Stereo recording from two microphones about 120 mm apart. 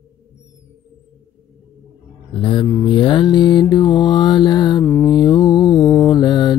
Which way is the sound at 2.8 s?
45° left (ahead or behind).